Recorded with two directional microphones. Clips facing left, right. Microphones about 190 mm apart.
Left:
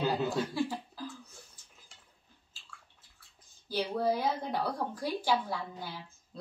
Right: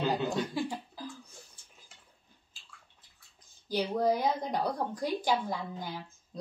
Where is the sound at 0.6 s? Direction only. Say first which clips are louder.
Left 1 dB; 15° right (ahead or behind).